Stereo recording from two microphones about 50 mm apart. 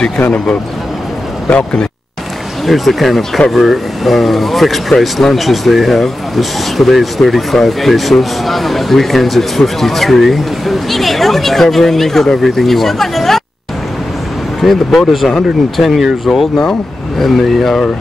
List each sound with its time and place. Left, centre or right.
0.2 s speech: left
2.6 s speech: centre
14.6 s speech: centre